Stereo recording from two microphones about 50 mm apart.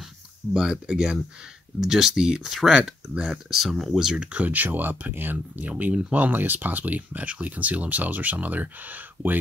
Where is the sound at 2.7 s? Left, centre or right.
Centre.